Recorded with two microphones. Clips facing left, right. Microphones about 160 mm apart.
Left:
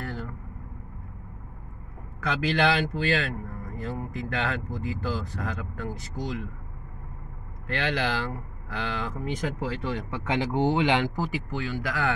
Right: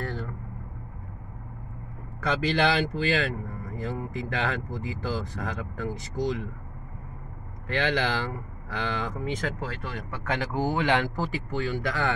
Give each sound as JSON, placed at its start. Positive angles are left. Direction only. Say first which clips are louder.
{"t": 0.0, "sound": "vehicle", "louder": "right 2 dB", "side_deg": 10}
{"t": 2.4, "sound": "speech", "louder": "left 1 dB", "side_deg": 0}
{"t": 7.6, "sound": "speech", "louder": "right 2 dB", "side_deg": 0}
{"t": 9.8, "sound": "speech", "louder": "even", "side_deg": 20}